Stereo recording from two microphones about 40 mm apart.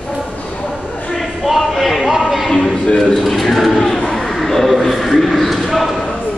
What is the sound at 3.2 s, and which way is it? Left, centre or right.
A man's voice, centre.